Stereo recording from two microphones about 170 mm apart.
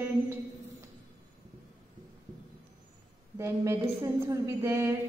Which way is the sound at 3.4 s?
15° right (ahead or behind).